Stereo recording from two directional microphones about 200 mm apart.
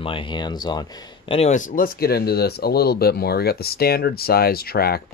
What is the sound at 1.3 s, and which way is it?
Speech, 35° left (ahead or behind).